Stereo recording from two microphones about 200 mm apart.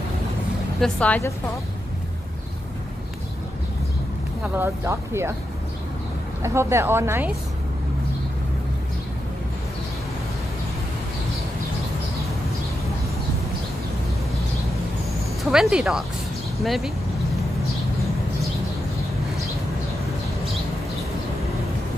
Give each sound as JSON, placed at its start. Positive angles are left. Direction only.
{"t": 0.7, "sound": "speech", "side_deg": 5}
{"t": 4.4, "sound": "speech", "side_deg": -10}
{"t": 6.4, "sound": "speech", "side_deg": -15}
{"t": 15.5, "sound": "speech", "side_deg": -5}